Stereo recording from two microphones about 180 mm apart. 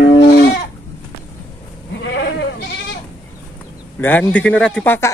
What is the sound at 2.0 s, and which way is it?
Goat, 75° left (ahead or behind).